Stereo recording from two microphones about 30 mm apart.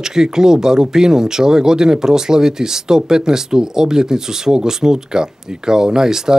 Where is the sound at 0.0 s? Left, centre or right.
Right.